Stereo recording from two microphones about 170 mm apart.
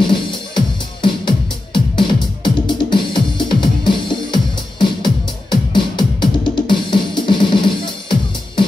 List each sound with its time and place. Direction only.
0.0 s music: 30° left (ahead or behind)